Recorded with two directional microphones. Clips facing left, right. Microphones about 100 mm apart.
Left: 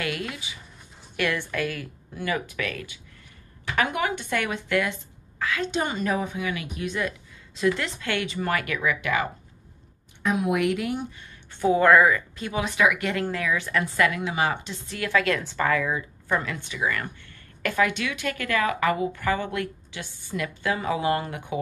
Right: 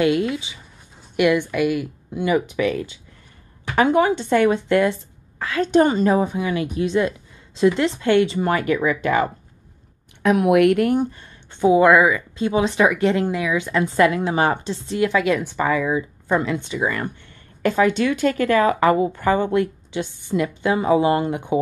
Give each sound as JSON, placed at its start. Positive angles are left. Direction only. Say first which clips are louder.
{"t": 0.0, "sound": "a woman's voice", "louder": "right 12 dB", "side_deg": -25}
{"t": 10.2, "sound": "speech", "louder": "right 9 dB", "side_deg": -70}
{"t": 11.5, "sound": "speech", "louder": "right 4 dB", "side_deg": -15}
{"t": 12.4, "sound": "a woman's voice", "louder": "right 7 dB", "side_deg": -25}
{"t": 14.9, "sound": "a woman's voice", "louder": "right 5 dB", "side_deg": -20}